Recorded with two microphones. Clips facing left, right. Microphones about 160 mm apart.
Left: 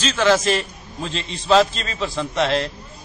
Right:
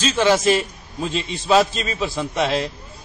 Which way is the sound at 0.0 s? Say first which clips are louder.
Even; 10° right (ahead or behind).